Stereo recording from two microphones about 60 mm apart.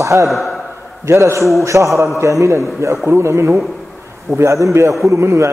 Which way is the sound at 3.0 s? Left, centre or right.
Right.